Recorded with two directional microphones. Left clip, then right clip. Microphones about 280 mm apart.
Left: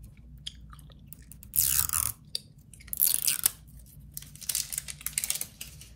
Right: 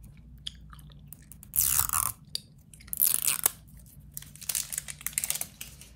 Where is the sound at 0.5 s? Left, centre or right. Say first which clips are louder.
Right 1 dB; centre.